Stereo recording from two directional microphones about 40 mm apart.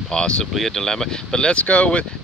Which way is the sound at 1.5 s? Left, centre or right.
Left.